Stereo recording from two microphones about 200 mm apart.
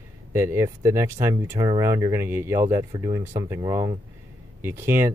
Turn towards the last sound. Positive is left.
turn(degrees=-10)  # may be behind; listen again after turning